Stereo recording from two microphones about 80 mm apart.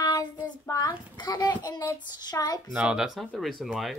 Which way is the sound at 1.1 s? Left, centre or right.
Left.